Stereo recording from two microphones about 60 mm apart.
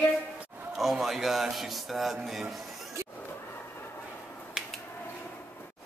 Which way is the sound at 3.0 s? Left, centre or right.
Right.